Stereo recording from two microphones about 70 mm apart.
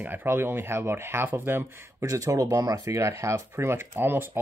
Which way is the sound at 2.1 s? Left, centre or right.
Right.